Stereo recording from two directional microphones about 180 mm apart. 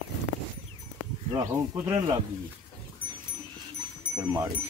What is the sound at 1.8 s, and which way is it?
Speech, 15° right (ahead or behind).